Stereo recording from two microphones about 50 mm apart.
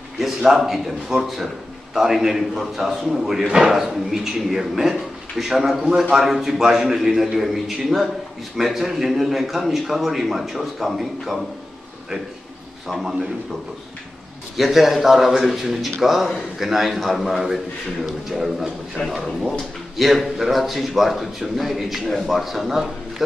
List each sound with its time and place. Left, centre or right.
0.2 s a man's voice: centre
12.8 s a man's voice: centre
14.6 s a man's voice: centre